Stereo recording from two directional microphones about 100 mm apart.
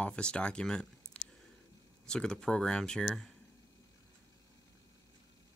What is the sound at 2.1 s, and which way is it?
Speech, 10° left (ahead or behind).